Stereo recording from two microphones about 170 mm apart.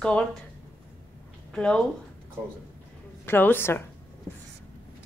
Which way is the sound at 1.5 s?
5° left (ahead or behind).